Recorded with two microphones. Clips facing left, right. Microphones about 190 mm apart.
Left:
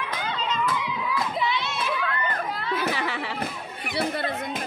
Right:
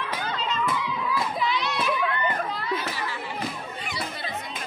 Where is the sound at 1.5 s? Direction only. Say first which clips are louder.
Right 1 dB; 25° left (ahead or behind).